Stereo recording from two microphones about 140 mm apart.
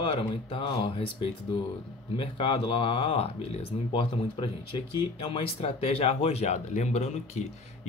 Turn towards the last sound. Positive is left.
turn(degrees=50)  # may be behind; listen again after turning